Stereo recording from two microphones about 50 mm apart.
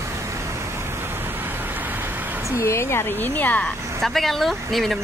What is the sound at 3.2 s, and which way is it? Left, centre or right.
Speech, left.